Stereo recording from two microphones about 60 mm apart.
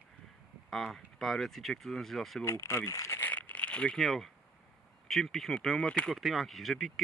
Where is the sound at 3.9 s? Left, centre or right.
Centre.